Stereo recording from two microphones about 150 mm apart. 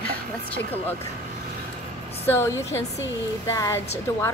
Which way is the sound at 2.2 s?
15° left (ahead or behind).